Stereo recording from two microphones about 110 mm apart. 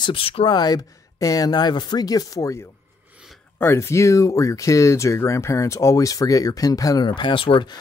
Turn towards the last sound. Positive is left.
turn(degrees=50)  # may be behind; listen again after turning